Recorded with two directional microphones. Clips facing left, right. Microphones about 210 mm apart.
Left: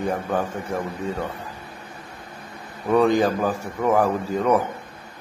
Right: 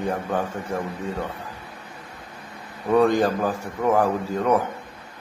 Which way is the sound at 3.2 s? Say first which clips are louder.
Left 1 dB; centre (ahead or behind).